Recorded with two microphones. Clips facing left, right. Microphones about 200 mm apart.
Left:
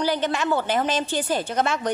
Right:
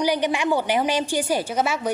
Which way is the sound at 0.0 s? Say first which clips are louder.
Right 2 dB; 15° right (ahead or behind).